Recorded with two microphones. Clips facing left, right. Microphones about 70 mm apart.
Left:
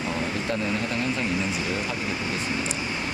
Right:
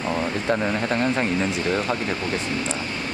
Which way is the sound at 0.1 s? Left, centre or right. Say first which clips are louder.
Right 6 dB; right.